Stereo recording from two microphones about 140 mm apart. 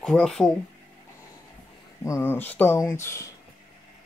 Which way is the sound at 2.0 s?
20° left (ahead or behind).